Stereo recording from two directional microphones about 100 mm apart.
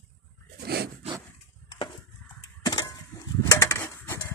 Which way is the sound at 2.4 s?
40° left (ahead or behind).